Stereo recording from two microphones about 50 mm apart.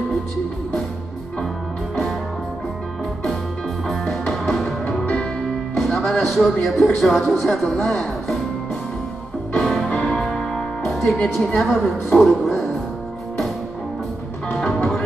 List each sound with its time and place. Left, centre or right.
3.8 s music: centre
5.0 s music: centre
5.8 s speech: centre
9.5 s music: centre
10.5 s music: centre
11.3 s a woman's voice: centre
12.2 s music: centre
14.6 s music: centre